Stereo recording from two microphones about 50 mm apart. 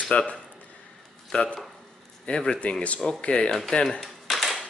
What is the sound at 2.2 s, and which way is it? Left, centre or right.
Speech, centre.